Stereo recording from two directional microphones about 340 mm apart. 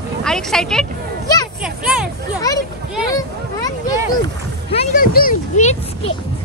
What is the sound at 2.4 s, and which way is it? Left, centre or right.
Speech, centre.